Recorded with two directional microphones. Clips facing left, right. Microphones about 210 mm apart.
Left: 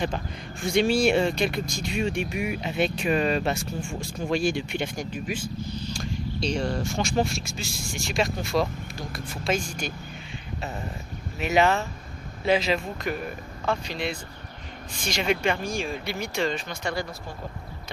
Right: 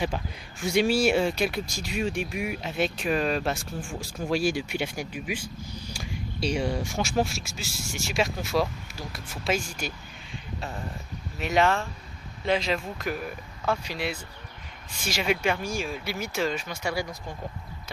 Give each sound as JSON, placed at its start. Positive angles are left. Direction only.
{"t": 0.0, "sound": "speech", "side_deg": -5}
{"t": 11.3, "sound": "speech", "side_deg": 5}